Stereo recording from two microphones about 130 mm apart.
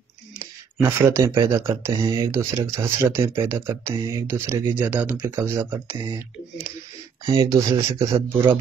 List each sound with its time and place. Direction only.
0.4 s speech: 20° right (ahead or behind)
7.2 s speech: 30° right (ahead or behind)